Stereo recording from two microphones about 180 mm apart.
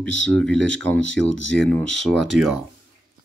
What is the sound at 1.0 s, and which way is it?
Speech, 90° left.